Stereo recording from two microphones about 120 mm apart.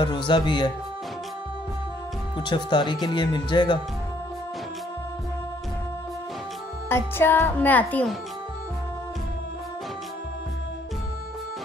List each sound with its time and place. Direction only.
0.0 s speech: 40° left (ahead or behind)
2.3 s speech: 40° left (ahead or behind)
7.2 s speech: 20° left (ahead or behind)